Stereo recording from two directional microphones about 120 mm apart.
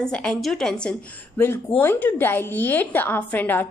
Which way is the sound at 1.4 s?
20° left (ahead or behind).